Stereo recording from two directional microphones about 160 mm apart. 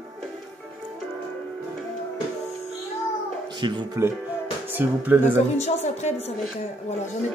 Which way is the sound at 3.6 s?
30° right (ahead or behind).